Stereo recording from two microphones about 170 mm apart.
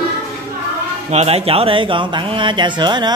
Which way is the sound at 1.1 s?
35° right (ahead or behind).